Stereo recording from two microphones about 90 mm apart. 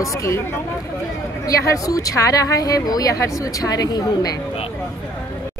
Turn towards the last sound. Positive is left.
turn(degrees=45)  # may be behind; listen again after turning